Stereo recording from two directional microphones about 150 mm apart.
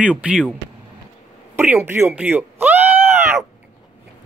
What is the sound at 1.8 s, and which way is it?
Speech, 15° right (ahead or behind).